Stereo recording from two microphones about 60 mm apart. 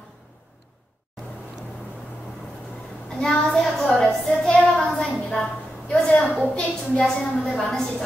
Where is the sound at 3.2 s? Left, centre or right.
Centre.